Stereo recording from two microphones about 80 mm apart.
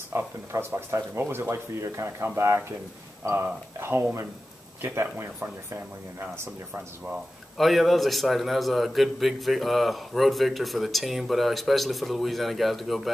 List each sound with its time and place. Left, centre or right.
0.1 s speech: right
5.7 s speech: right
7.5 s a man's voice: centre